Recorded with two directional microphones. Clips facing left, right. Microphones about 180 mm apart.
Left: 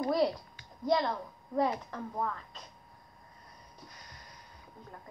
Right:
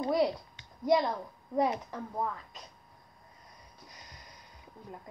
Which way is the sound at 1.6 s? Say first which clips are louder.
Right 1 dB; 15° right (ahead or behind).